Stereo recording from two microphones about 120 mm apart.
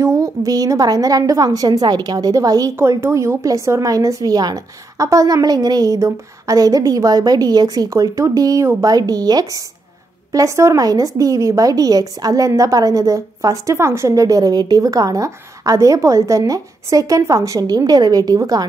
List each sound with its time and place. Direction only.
0.0 s a woman's voice: 25° right (ahead or behind)